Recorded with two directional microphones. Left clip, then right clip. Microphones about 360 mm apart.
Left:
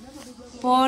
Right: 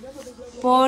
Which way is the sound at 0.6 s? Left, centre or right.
Centre.